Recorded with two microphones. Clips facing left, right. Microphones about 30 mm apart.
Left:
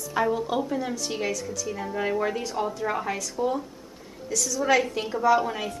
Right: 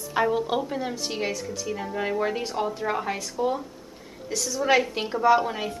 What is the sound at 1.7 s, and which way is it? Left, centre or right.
Speech, centre.